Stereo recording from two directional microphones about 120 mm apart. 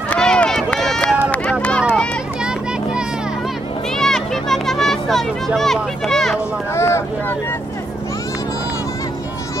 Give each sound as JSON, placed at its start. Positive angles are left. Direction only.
{"t": 0.1, "sound": "run", "side_deg": 10}
{"t": 4.0, "sound": "a sound", "side_deg": 5}
{"t": 6.7, "sound": "speech", "side_deg": 20}